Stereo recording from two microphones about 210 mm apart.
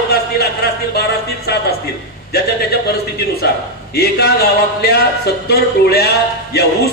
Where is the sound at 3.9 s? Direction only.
50° left (ahead or behind).